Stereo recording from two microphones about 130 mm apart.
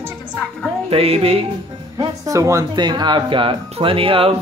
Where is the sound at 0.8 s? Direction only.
50° right (ahead or behind).